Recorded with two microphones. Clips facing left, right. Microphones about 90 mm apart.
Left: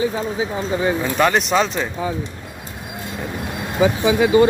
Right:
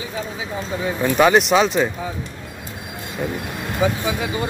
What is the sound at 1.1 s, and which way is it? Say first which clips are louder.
Speech: right 4 dB; 5° right (ahead or behind).